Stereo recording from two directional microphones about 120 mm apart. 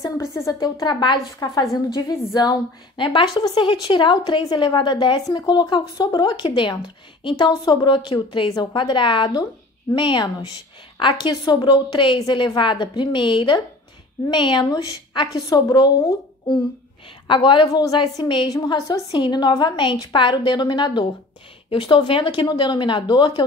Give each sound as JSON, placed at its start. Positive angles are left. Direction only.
{"t": 0.0, "sound": "a woman's voice", "side_deg": 25}
{"t": 3.0, "sound": "a woman's voice", "side_deg": 45}